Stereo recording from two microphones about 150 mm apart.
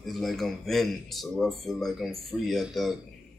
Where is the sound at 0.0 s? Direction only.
Centre (ahead or behind).